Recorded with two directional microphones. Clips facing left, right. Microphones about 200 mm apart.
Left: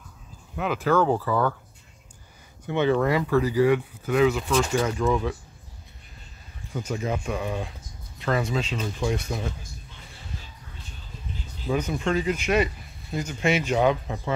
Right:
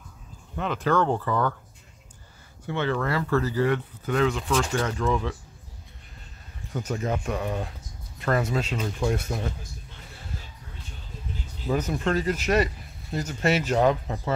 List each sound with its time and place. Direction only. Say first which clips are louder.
0.6 s speech: left 2 dB; 5° left (ahead or behind)
2.7 s speech: left 5 dB; 15° left (ahead or behind)
6.8 s speech: even; centre (ahead or behind)
11.7 s speech: even; 5° right (ahead or behind)
12.1 s speech: even; 40° right (ahead or behind)
13.2 s speech: even; 5° right (ahead or behind)